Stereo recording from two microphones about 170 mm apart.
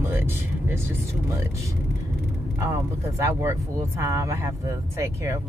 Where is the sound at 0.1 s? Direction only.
15° right (ahead or behind).